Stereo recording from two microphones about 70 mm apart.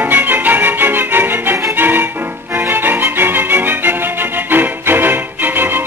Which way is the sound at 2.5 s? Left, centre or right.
Right.